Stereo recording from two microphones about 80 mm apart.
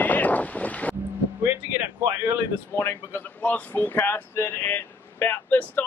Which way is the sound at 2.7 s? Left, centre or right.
Left.